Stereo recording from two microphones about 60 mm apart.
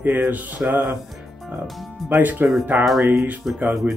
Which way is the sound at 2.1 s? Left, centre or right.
Right.